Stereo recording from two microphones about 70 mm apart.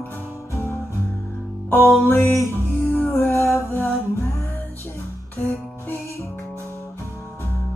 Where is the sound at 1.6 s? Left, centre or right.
Left.